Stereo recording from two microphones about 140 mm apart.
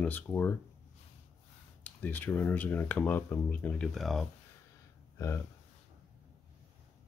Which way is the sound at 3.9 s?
Centre (ahead or behind).